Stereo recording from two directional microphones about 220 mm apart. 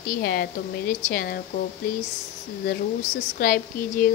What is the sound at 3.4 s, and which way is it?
Speech, 40° left (ahead or behind).